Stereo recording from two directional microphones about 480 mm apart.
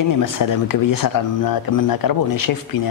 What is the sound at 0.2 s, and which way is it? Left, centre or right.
Speech, left.